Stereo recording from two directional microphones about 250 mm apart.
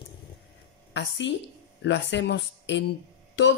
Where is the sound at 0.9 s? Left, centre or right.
Left.